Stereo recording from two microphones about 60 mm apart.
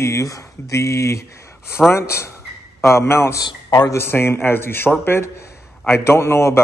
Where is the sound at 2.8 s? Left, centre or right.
Left.